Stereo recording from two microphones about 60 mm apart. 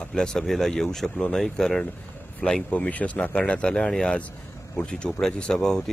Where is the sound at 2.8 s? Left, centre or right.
Left.